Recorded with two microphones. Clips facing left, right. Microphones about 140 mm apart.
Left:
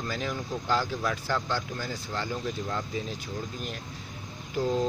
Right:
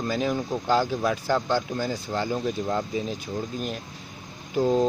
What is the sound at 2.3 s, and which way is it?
Speech, 35° right (ahead or behind).